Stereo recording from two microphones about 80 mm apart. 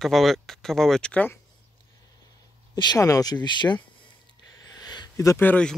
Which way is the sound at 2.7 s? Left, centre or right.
Left.